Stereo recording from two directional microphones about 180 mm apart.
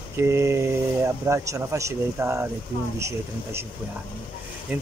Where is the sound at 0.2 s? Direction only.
15° right (ahead or behind).